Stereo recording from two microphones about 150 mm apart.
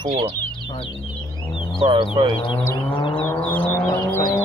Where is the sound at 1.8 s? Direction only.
35° right (ahead or behind).